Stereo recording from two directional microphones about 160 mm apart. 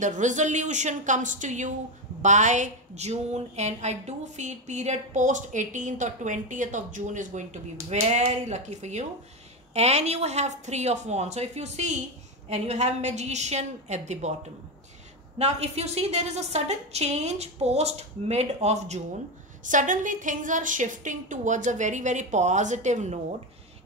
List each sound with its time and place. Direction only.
0.0 s speech: 50° right (ahead or behind)
15.3 s speech: 40° right (ahead or behind)